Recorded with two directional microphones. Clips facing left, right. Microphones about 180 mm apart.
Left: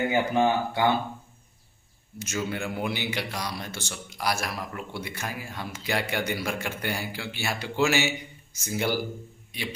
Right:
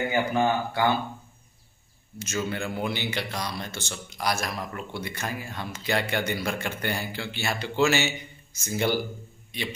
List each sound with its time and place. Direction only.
0.1 s speech: 20° left (ahead or behind)
2.2 s a man's voice: 10° left (ahead or behind)